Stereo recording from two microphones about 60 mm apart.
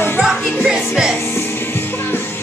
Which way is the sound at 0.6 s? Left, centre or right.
Centre.